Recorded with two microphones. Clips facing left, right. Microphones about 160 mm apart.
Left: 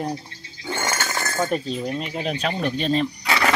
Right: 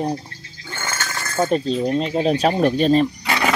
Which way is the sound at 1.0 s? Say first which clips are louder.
Left 2 dB; 20° left (ahead or behind).